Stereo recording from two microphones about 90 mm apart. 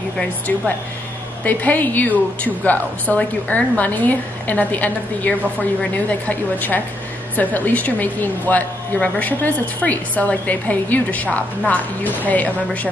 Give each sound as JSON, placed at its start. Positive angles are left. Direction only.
{"t": 1.4, "sound": "a woman's voice", "side_deg": 20}